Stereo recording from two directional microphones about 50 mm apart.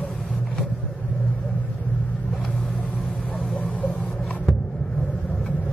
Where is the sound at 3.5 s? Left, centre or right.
Left.